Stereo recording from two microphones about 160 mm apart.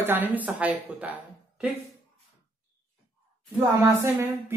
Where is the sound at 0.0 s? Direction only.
10° right (ahead or behind).